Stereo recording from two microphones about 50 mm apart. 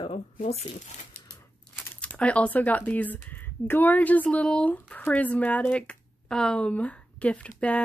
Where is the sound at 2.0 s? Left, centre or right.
Left.